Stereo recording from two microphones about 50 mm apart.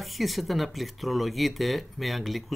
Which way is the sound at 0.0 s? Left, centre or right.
Centre.